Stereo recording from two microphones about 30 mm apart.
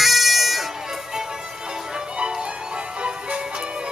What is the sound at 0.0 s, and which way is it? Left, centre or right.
Bagpipes, centre.